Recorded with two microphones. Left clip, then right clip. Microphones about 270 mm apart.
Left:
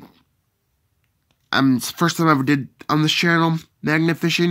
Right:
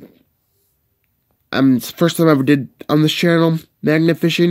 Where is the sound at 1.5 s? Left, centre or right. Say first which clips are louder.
Right 2 dB; centre.